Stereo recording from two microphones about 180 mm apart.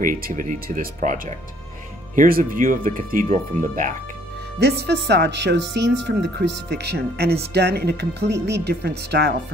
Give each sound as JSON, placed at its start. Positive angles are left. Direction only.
{"t": 0.0, "sound": "speech", "side_deg": -50}
{"t": 4.6, "sound": "speech", "side_deg": -70}